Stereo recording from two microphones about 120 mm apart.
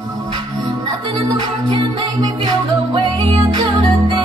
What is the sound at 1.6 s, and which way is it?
Music, 40° right (ahead or behind).